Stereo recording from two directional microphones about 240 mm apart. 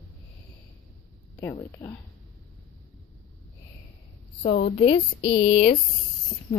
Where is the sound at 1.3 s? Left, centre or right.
Centre.